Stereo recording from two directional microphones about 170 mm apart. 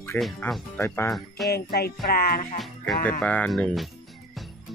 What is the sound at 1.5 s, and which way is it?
Music, 65° left (ahead or behind).